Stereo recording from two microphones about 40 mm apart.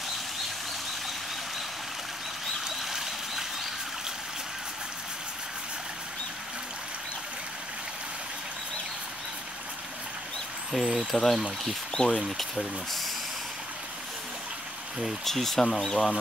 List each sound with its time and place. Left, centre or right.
2.6 s a sound: centre
10.7 s speech: centre
11.9 s speech: centre
12.2 s speech: centre
15.2 s speech: centre